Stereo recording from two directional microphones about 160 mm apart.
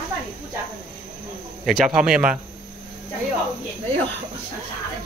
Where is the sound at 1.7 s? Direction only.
5° right (ahead or behind).